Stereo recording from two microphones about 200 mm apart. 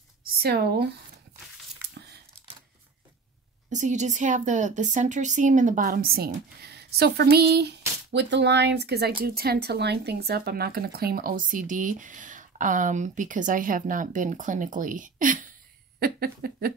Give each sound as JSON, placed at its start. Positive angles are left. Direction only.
{"t": 0.2, "sound": "speech", "side_deg": -50}
{"t": 3.7, "sound": "speech", "side_deg": -35}